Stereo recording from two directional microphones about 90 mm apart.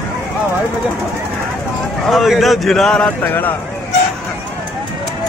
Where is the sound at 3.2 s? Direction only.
20° left (ahead or behind).